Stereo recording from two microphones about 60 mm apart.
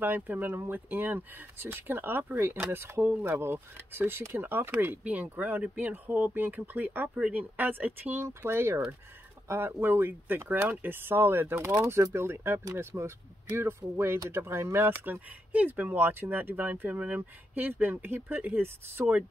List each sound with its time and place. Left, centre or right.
0.0 s speech: right
3.0 s speech: right
3.9 s speech: right
5.0 s speech: right
8.3 s speech: right